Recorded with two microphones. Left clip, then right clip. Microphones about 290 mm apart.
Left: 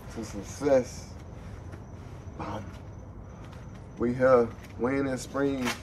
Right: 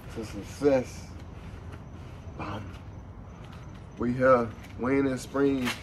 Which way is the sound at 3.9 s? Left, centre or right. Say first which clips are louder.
Left 1 dB; centre.